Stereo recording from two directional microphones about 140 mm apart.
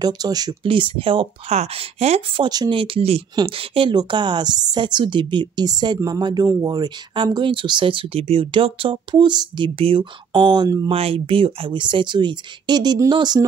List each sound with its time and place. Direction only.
0.0 s a woman's voice: 30° right (ahead or behind)
11.0 s a woman's voice: 40° right (ahead or behind)